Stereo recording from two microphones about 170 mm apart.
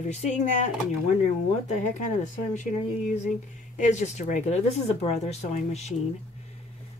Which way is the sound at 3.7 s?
45° left (ahead or behind).